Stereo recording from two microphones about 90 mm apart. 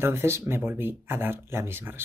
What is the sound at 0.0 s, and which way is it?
Speech, 30° right (ahead or behind).